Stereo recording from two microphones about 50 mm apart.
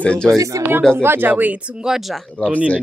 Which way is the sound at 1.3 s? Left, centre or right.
Right.